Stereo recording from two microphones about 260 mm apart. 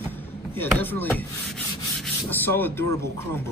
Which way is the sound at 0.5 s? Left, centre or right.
Centre.